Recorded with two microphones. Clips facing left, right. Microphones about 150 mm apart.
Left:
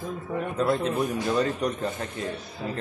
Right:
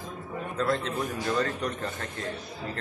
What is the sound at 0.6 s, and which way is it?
A man's voice, 15° left (ahead or behind).